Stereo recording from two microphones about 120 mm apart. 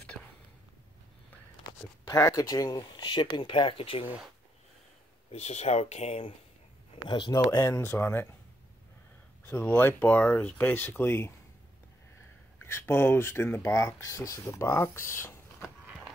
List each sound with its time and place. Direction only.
1.7 s speech: 25° left (ahead or behind); by 4.1 s 50° left (ahead or behind)
5.3 s speech: 70° left (ahead or behind)
7.1 s speech: 40° left (ahead or behind)
7.3 s speech: 25° left (ahead or behind)
9.5 s speech: 15° left (ahead or behind)
12.6 s speech: 20° left (ahead or behind)